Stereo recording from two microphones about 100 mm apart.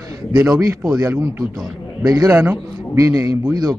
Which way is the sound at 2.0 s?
35° right (ahead or behind).